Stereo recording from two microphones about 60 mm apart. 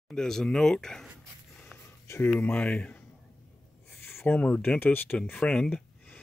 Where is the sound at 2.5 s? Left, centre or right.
Left.